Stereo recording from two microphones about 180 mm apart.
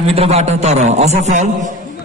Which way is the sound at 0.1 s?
35° right (ahead or behind).